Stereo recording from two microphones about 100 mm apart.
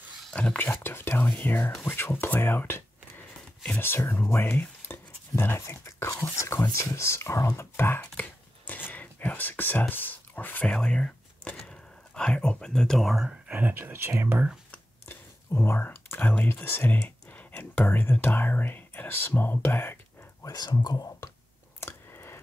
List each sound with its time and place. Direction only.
0.2 s speech: 10° left (ahead or behind)
8.2 s whispering: 15° left (ahead or behind)
10.7 s a sound: 5° left (ahead or behind)
12.2 s speech: 10° left (ahead or behind)
13.5 s speech: 15° right (ahead or behind)
14.7 s speech: 20° left (ahead or behind)
20.4 s speech: 40° left (ahead or behind)
21.7 s a sound: 25° left (ahead or behind)